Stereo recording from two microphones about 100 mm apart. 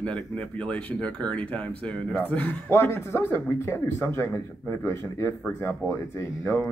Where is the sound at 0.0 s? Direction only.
10° left (ahead or behind).